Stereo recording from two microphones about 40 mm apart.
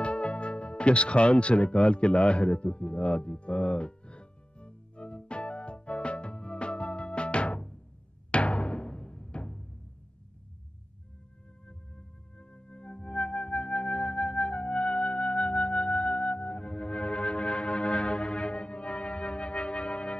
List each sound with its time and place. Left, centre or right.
0.0 s music: left
8.3 s timpani: left
12.4 s music: left